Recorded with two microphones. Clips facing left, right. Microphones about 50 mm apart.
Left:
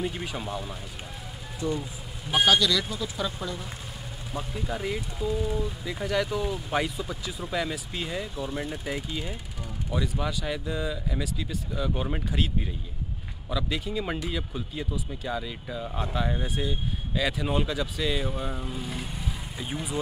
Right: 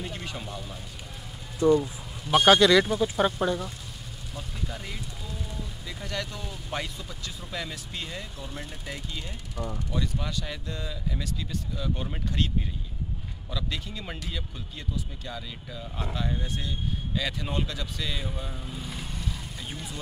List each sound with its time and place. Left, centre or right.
0.0 s speech: centre
2.4 s speech: right
4.6 s speech: centre
6.0 s speech: centre
13.5 s speech: centre